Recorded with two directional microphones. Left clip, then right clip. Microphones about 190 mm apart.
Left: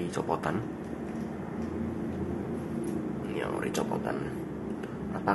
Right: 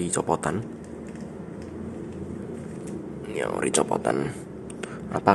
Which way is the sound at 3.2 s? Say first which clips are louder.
Right 8 dB; 55° right (ahead or behind).